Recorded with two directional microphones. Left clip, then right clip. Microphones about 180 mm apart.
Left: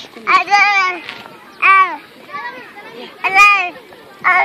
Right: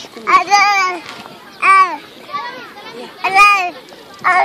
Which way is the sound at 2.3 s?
45° left (ahead or behind).